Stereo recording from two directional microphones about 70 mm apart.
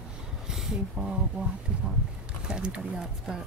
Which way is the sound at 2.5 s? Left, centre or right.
Centre.